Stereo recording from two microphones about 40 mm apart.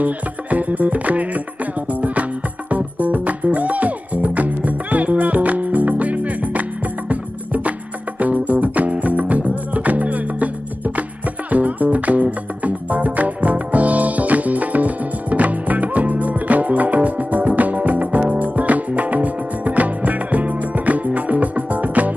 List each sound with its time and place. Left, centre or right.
0.0 s music: right
11.5 s music: right